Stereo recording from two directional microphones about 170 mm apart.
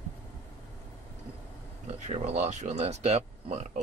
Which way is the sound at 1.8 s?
40° right (ahead or behind).